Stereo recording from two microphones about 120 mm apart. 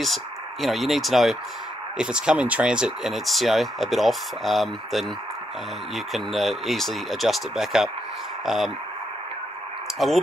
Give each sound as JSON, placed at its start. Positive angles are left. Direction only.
{"t": 0.0, "sound": "speech", "side_deg": 0}
{"t": 9.9, "sound": "speech", "side_deg": 0}